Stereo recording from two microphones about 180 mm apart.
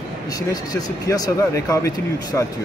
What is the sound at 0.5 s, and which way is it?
Speech, 20° left (ahead or behind).